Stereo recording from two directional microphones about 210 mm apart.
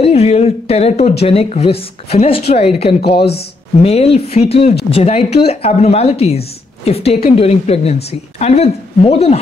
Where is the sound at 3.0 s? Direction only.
50° left (ahead or behind).